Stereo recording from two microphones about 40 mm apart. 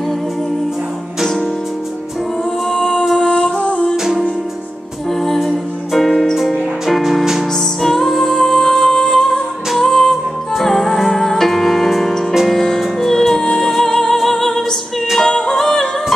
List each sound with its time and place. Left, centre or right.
1.2 s music: centre
2.7 s music: centre
3.6 s music: left
3.9 s music: centre
5.2 s music: centre
7.8 s music: centre